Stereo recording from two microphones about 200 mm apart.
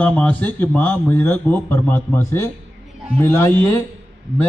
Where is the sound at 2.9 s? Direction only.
Centre (ahead or behind).